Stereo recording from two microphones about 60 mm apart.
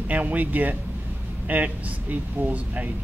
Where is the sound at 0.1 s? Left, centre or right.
Right.